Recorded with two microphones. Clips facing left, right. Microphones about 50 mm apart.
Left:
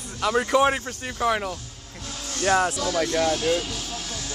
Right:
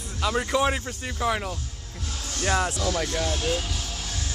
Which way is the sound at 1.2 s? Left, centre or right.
Centre.